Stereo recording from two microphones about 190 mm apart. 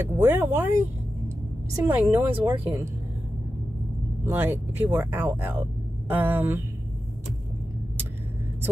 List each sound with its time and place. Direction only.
0.0 s speech: 10° right (ahead or behind)
1.9 s speech: 10° right (ahead or behind)
4.3 s speech: 10° right (ahead or behind)